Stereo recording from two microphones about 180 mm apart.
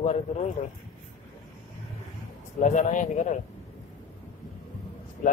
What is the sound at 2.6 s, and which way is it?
Speech, 45° left (ahead or behind).